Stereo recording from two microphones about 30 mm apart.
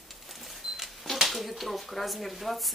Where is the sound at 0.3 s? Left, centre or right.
Centre.